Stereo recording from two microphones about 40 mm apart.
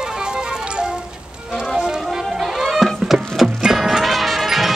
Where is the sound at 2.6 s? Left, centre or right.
Centre.